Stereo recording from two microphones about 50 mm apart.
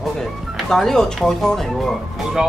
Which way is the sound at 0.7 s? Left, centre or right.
Centre.